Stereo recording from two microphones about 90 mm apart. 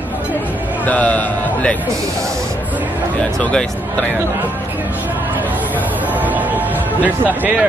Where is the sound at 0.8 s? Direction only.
15° left (ahead or behind).